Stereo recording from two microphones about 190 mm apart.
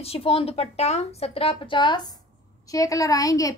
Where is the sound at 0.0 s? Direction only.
30° left (ahead or behind).